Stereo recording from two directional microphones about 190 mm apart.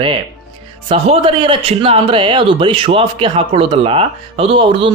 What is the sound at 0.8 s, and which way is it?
A man's voice, 30° right (ahead or behind).